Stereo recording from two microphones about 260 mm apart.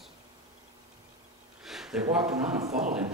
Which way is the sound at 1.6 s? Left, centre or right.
Centre.